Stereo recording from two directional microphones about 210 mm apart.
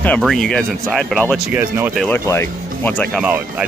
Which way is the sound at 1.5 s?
10° right (ahead or behind).